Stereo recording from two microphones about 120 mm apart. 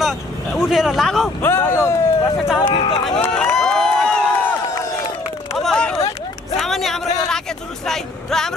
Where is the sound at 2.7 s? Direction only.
45° left (ahead or behind).